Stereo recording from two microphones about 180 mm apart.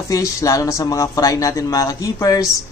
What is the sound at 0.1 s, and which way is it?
Speech, 15° left (ahead or behind).